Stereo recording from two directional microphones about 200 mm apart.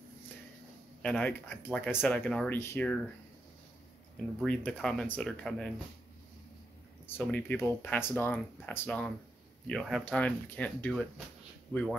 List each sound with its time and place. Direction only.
1.0 s speech: 5° left (ahead or behind)
4.4 s speech: 5° left (ahead or behind)
7.2 s speech: 10° left (ahead or behind)